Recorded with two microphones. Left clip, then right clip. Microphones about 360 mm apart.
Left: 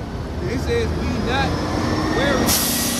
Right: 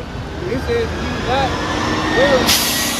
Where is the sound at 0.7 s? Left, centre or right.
Right.